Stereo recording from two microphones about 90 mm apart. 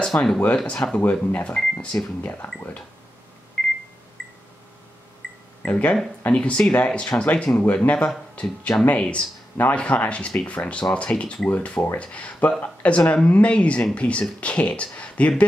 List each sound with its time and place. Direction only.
0.1 s speech: 20° left (ahead or behind)
3.6 s a sound: 5° left (ahead or behind)
5.6 s speech: 15° left (ahead or behind)